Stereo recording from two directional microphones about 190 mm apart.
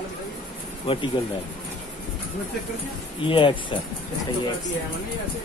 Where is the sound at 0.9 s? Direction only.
30° left (ahead or behind).